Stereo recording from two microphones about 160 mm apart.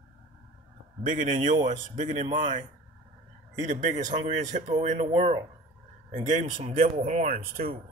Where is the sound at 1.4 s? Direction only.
50° right (ahead or behind).